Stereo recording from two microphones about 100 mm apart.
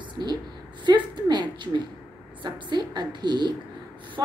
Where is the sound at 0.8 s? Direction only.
50° right (ahead or behind).